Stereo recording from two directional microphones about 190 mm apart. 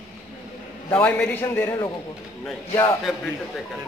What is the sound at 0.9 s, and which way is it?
Speech, 5° left (ahead or behind).